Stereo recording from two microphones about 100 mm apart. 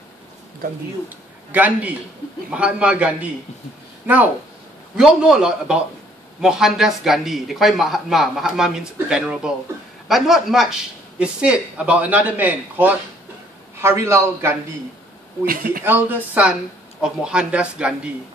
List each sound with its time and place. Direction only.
1.0 s speech: 15° right (ahead or behind)
4.9 s a man's voice: 5° right (ahead or behind); by 14.5 s 25° right (ahead or behind)
15.8 s speech: 20° right (ahead or behind)